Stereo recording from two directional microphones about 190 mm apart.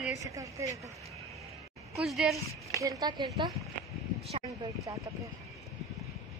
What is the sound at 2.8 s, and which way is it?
Speech, 20° right (ahead or behind).